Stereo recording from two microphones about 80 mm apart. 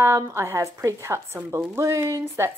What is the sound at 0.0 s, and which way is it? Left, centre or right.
A woman's voice, right.